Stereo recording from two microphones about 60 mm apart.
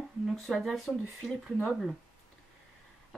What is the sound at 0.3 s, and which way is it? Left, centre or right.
Speech, centre.